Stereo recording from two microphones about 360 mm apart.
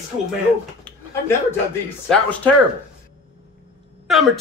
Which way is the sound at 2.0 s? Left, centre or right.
Centre.